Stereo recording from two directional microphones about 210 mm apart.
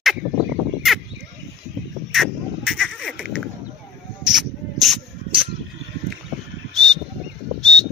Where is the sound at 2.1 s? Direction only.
Centre (ahead or behind).